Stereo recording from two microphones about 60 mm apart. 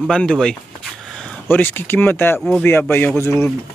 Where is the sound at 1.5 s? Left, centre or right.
Left.